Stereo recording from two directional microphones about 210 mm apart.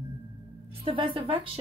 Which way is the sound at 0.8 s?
25° right (ahead or behind).